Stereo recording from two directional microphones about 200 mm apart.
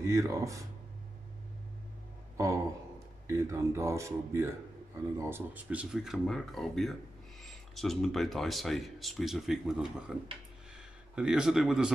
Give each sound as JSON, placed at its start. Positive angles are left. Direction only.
{"t": 0.0, "sound": "speech", "side_deg": -15}
{"t": 2.3, "sound": "a sound", "side_deg": -15}
{"t": 3.3, "sound": "speech", "side_deg": -15}
{"t": 11.1, "sound": "speech", "side_deg": -5}